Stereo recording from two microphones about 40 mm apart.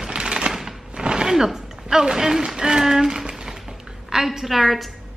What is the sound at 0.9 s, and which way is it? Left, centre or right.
A woman's voice, right.